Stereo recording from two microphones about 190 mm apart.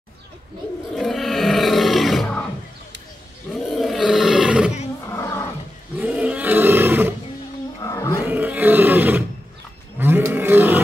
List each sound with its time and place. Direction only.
0.9 s roar: centre (ahead or behind)
3.5 s roar: centre (ahead or behind)
5.9 s roar: 5° right (ahead or behind)
7.8 s a sound: 15° left (ahead or behind)
8.3 s roar: 10° right (ahead or behind)